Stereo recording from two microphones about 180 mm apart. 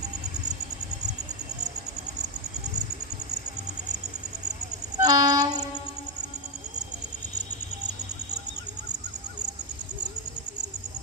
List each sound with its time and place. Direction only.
5.0 s train: 20° right (ahead or behind)